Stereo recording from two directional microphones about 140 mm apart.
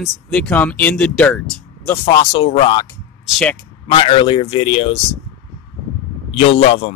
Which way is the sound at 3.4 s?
10° left (ahead or behind).